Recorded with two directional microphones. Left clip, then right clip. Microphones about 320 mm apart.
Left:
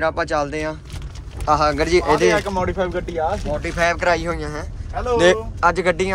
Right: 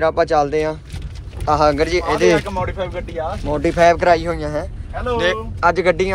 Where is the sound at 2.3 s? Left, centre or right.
Left.